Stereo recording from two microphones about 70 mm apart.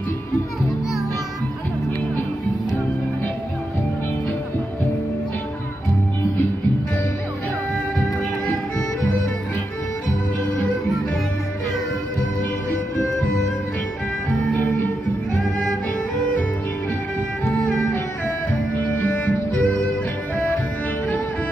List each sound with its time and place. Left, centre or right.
18.8 s music: left